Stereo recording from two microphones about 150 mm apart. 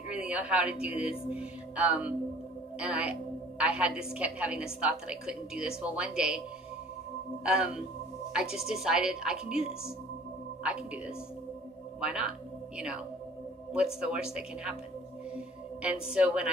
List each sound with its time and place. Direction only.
0.1 s a woman's voice: 5° right (ahead or behind)
7.4 s a woman's voice: 5° right (ahead or behind)
15.3 s singing bowl: 10° right (ahead or behind)